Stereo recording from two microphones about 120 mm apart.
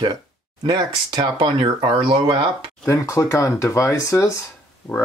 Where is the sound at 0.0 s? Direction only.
40° right (ahead or behind).